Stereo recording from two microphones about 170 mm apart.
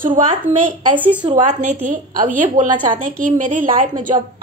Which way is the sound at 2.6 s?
50° right (ahead or behind).